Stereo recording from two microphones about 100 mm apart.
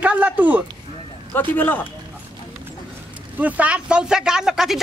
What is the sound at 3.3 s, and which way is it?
Speech, 15° right (ahead or behind).